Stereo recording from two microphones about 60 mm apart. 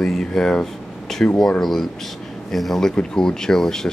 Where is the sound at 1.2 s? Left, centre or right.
Left.